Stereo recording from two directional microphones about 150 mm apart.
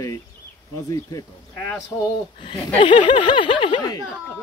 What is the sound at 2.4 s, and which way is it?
Speech, 35° left (ahead or behind).